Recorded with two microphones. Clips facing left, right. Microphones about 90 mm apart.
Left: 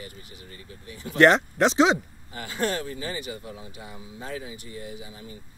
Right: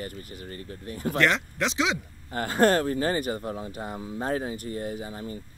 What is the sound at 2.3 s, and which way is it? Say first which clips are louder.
Speech: right 7 dB; 45° right (ahead or behind).